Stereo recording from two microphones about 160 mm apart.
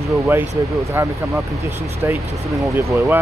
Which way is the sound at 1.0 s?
15° right (ahead or behind).